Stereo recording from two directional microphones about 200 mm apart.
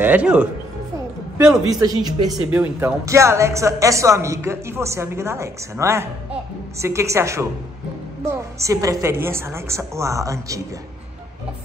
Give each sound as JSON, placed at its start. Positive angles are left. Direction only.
{"t": 0.0, "sound": "speech", "side_deg": -5}
{"t": 1.4, "sound": "speech", "side_deg": -15}